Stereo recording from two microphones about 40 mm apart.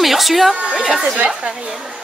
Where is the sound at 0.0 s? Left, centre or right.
Centre.